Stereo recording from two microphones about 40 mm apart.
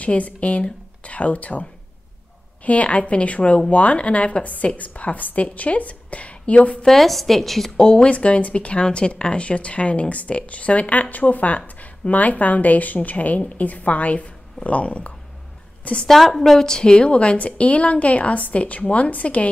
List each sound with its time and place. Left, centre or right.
0.0 s speech: left
6.9 s a woman's voice: centre
7.7 s a woman's voice: left
16.1 s speech: centre; by 19.5 s left